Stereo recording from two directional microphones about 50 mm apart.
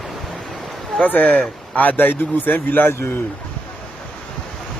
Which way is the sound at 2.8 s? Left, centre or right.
Left.